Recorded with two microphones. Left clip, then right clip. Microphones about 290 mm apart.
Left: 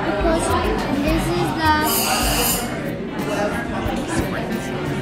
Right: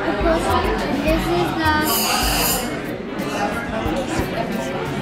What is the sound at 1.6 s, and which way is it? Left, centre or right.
Music, left.